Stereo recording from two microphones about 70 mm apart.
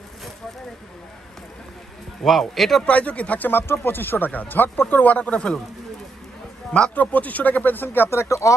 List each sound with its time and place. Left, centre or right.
2.2 s speech: centre
2.8 s speech: centre
6.7 s speech: centre; by 8.5 s left